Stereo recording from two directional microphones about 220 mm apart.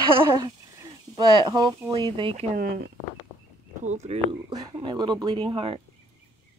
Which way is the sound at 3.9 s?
30° right (ahead or behind).